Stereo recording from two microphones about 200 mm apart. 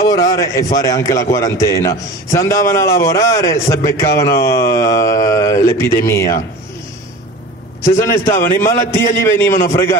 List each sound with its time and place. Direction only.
0.1 s a man's voice: 15° left (ahead or behind)
7.8 s a man's voice: 15° left (ahead or behind)